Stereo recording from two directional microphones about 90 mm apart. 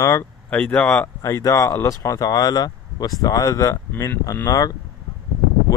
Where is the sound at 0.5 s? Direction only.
15° left (ahead or behind).